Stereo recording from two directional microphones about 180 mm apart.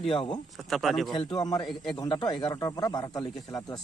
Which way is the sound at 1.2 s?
20° left (ahead or behind).